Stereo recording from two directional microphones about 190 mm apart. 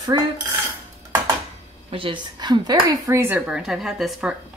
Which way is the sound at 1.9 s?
25° right (ahead or behind).